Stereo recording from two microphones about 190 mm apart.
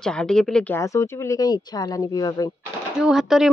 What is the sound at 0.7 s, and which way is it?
Speech, 15° left (ahead or behind).